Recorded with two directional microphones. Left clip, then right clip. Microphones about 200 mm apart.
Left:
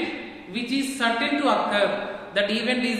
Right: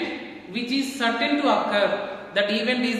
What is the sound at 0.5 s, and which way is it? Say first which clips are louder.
A man's voice: right 1 dB; centre (ahead or behind).